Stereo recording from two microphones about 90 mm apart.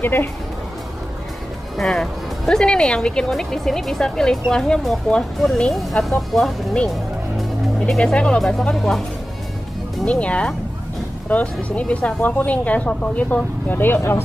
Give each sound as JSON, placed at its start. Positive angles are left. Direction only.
{"t": 0.0, "sound": "speech", "side_deg": 20}
{"t": 1.8, "sound": "speech", "side_deg": 5}
{"t": 7.9, "sound": "speech", "side_deg": 10}
{"t": 10.0, "sound": "speech", "side_deg": 15}